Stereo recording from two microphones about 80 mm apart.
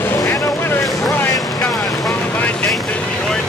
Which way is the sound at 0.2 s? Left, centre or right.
Left.